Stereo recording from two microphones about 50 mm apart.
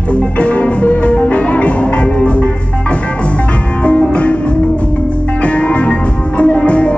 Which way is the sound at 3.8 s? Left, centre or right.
Left.